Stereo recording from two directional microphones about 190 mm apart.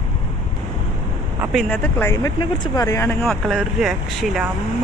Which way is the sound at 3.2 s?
Centre (ahead or behind).